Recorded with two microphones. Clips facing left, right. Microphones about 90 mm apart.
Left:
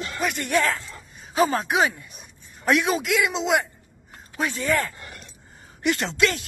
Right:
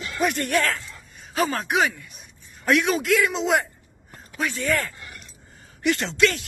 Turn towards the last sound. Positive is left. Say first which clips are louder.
# right 1 dB
turn(degrees=25)  # may be behind; listen again after turning